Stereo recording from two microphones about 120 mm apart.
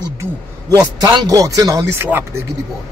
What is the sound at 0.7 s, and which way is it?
A man's voice, 35° right (ahead or behind).